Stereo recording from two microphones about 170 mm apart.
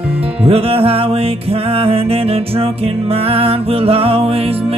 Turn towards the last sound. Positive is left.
turn(degrees=-35)  # may be behind; listen again after turning